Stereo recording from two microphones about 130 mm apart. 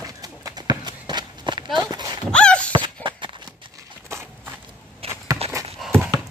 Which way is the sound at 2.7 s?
40° right (ahead or behind).